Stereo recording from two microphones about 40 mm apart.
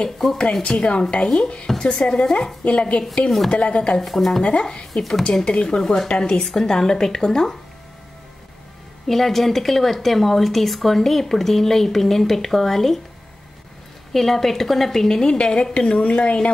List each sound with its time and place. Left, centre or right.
0.4 s a woman's voice: left
2.6 s speech: left
3.3 s speech: centre
3.5 s a woman's voice: left
4.0 s speech: centre
4.4 s a woman's voice: left
6.4 s a woman's voice: centre
9.0 s speech: centre
14.1 s speech: centre
15.2 s a woman's voice: left